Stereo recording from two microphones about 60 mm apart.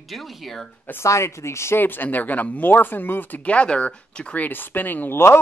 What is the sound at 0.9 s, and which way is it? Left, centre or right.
Speech, left.